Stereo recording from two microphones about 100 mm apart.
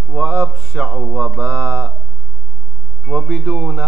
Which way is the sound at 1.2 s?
15° left (ahead or behind).